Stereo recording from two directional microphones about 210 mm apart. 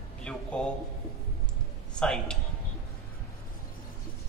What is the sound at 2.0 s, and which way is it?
Speech, 5° left (ahead or behind).